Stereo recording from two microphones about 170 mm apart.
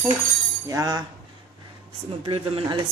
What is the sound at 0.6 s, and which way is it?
Speech, 20° right (ahead or behind).